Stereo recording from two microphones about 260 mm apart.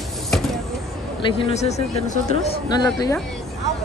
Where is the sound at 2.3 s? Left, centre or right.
Centre.